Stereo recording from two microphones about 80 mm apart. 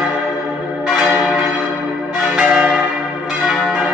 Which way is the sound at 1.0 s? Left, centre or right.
Centre.